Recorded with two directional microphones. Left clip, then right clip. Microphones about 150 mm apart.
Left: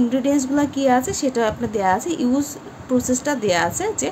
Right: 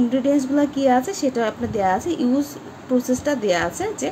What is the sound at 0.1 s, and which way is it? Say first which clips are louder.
A woman's voice: even; 15° left (ahead or behind).